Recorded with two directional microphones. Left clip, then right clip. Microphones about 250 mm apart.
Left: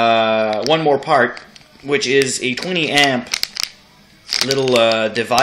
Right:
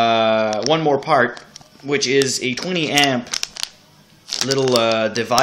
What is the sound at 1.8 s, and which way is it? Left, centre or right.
Speech, centre.